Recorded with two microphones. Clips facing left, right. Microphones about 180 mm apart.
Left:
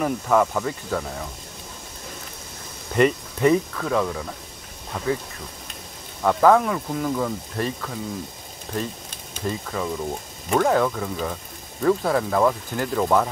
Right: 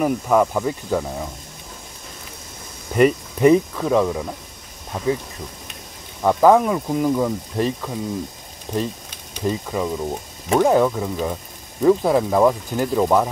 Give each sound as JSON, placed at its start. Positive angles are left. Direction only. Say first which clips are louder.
{"t": 0.0, "sound": "speech", "louder": "right 3 dB", "side_deg": -10}
{"t": 2.9, "sound": "speech", "louder": "right 3 dB", "side_deg": -10}
{"t": 6.2, "sound": "speech", "louder": "right 3 dB", "side_deg": -15}